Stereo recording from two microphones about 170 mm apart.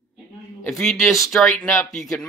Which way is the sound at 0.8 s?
Centre (ahead or behind).